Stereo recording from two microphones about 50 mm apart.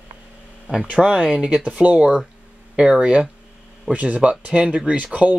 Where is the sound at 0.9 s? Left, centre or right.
Centre.